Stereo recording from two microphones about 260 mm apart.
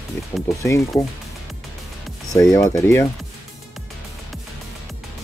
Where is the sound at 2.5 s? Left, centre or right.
Centre.